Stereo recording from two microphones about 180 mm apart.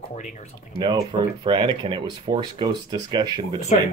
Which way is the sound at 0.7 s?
25° right (ahead or behind).